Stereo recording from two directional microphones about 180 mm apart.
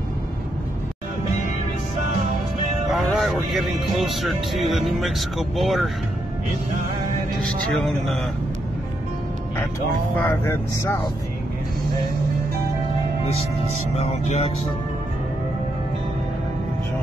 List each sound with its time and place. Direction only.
2.9 s speech: centre (ahead or behind)
7.7 s speech: centre (ahead or behind)
10.1 s speech: 10° left (ahead or behind)
13.9 s music: 35° left (ahead or behind)